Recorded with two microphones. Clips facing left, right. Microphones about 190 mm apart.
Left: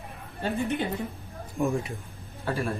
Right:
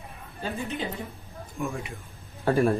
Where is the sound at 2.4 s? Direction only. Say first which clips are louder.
Right 8 dB; 55° right (ahead or behind).